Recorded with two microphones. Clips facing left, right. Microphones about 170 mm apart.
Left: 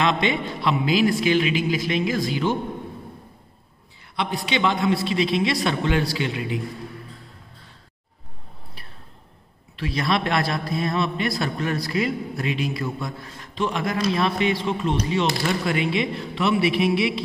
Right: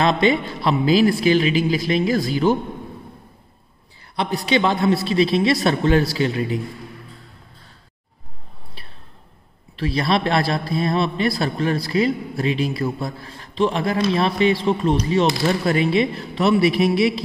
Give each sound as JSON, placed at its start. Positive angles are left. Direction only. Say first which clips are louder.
{"t": 0.0, "sound": "a man's voice", "louder": "right 4 dB", "side_deg": -35}
{"t": 4.2, "sound": "a man's voice", "louder": "right 4 dB", "side_deg": -35}
{"t": 9.8, "sound": "a man's voice", "louder": "right 3 dB", "side_deg": -30}